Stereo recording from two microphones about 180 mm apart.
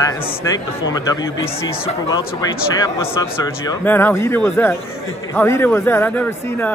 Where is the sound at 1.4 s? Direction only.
35° left (ahead or behind).